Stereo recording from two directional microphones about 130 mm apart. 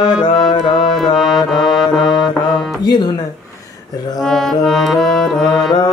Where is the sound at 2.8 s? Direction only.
35° left (ahead or behind).